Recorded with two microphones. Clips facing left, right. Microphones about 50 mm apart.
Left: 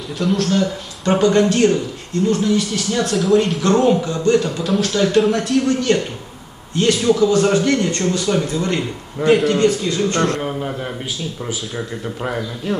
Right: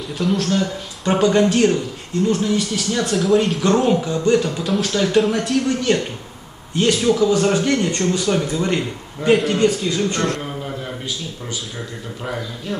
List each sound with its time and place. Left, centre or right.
0.2 s a man's voice: centre
4.0 s a man's voice: centre
4.6 s a man's voice: centre
9.3 s speech: centre
9.6 s a man's voice: centre
10.1 s speech: centre